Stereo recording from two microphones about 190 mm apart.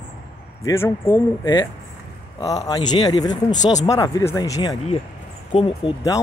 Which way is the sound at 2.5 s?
20° left (ahead or behind).